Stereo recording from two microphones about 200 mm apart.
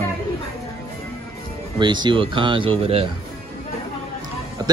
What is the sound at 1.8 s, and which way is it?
A man's voice, 20° right (ahead or behind).